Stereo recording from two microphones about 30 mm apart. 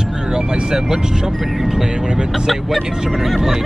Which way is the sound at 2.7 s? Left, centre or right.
Centre.